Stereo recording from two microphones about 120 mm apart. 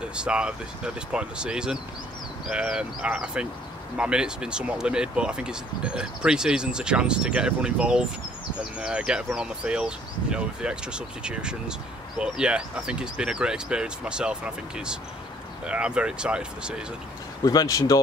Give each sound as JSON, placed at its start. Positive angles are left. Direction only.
{"t": 0.1, "sound": "speech", "side_deg": -10}
{"t": 17.5, "sound": "speech", "side_deg": 30}